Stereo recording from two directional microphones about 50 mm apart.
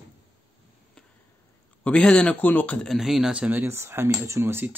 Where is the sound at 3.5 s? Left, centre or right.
Right.